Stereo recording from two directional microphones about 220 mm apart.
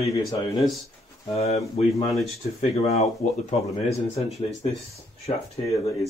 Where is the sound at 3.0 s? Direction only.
30° left (ahead or behind).